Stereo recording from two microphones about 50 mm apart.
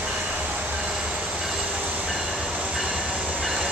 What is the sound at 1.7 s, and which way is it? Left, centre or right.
Train, right.